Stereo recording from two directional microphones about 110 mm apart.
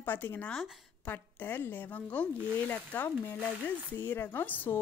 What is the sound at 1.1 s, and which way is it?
Speech, 20° left (ahead or behind).